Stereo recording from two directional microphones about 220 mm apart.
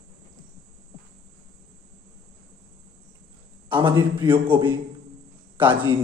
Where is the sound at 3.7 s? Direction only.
20° right (ahead or behind).